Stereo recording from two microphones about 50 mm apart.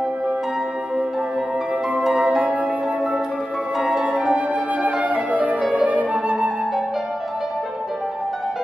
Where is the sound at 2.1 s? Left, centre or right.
Right.